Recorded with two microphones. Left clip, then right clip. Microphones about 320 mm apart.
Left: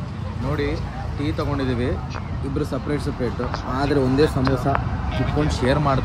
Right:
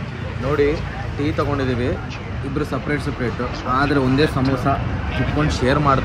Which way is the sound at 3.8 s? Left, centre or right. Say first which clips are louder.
Right 1 dB; right.